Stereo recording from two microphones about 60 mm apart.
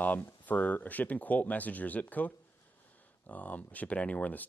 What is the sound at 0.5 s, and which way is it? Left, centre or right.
Speech, left.